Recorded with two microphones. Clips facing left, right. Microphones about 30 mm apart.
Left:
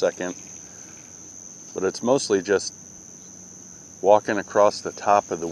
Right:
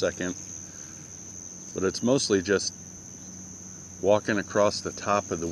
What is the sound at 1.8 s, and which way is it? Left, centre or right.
Speech, centre.